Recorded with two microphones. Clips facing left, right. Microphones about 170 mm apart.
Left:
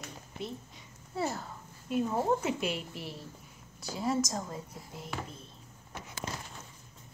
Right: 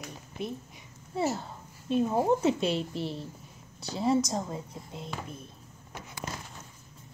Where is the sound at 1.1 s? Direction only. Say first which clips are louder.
Right 4 dB; 25° right (ahead or behind).